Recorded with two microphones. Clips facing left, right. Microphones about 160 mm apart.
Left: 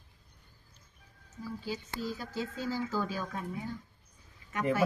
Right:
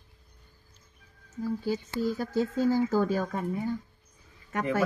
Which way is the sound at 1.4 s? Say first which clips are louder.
Right 8 dB; 50° right (ahead or behind).